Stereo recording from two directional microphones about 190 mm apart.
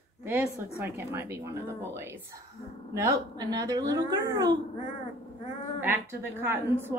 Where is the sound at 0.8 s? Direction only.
15° right (ahead or behind).